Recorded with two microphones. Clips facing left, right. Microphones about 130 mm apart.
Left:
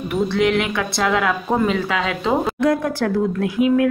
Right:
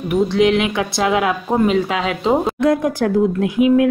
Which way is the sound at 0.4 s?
20° right (ahead or behind).